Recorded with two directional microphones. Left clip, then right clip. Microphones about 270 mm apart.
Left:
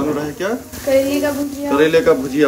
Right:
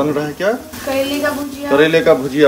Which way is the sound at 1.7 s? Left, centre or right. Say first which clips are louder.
Right 2 dB; centre.